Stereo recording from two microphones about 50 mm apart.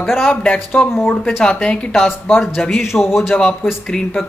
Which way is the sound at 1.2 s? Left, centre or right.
Centre.